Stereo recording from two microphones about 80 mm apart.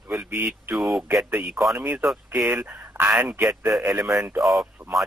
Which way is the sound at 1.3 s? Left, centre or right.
Right.